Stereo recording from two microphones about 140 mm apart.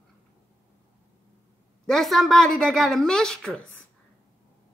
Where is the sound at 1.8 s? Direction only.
Centre (ahead or behind).